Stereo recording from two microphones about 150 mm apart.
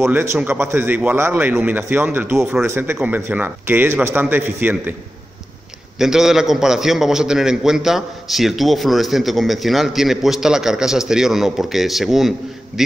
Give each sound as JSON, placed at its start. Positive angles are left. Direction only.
{"t": 0.0, "sound": "a man's voice", "side_deg": -15}
{"t": 5.9, "sound": "a man's voice", "side_deg": -5}